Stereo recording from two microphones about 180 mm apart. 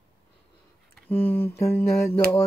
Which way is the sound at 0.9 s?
10° left (ahead or behind).